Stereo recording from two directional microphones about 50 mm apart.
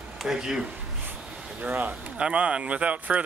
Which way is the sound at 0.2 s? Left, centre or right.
Centre.